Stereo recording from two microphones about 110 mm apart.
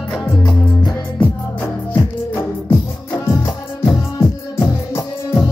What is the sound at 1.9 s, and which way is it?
Music, 20° left (ahead or behind).